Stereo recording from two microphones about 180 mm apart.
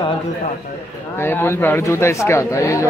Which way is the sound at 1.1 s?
15° left (ahead or behind).